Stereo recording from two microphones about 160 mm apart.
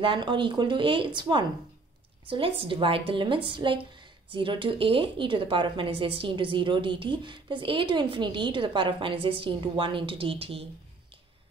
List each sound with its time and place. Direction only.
0.0 s a woman's voice: 30° right (ahead or behind)